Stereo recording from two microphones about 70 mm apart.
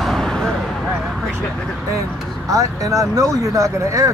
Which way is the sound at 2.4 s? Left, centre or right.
Right.